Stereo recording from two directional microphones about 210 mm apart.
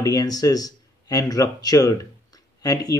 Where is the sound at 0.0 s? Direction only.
20° left (ahead or behind).